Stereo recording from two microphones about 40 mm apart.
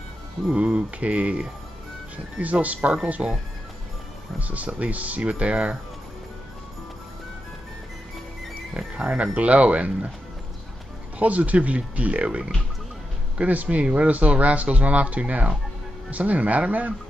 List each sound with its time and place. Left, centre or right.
0.6 s speech: right
2.4 s speech: right
3.2 s speech: right
4.4 s speech: right
8.8 s music: right
9.1 s speech: right
11.1 s speech: right